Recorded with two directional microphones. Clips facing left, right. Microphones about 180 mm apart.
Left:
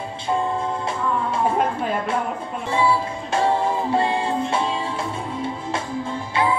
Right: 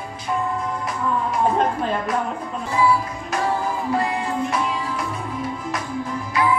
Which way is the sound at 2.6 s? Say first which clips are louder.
Right 1 dB; 25° left (ahead or behind).